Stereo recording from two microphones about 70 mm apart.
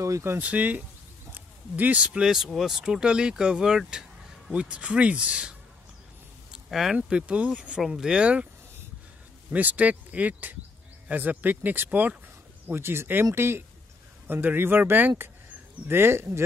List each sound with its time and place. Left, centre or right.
0.0 s speech: right
0.4 s speech: right
2.3 s speech: centre
6.5 s a sound: centre
7.0 s speech: centre
9.5 s speech: right
12.6 s speech: right